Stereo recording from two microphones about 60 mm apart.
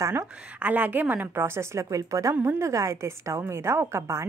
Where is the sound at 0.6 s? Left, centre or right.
Right.